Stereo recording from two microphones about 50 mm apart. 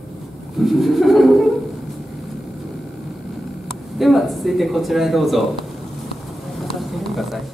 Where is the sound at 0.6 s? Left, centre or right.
Centre.